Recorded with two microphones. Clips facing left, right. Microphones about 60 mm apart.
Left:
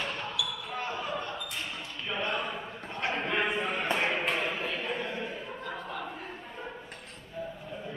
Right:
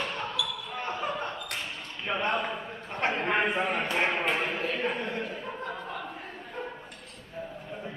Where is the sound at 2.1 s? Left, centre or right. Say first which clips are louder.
Right 4 dB; right.